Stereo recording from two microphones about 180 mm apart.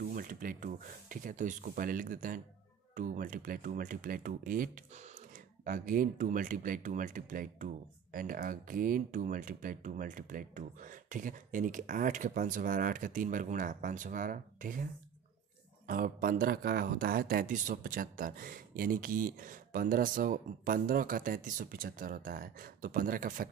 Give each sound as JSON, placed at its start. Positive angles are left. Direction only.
{"t": 0.0, "sound": "speech", "side_deg": -50}
{"t": 15.9, "sound": "speech", "side_deg": -50}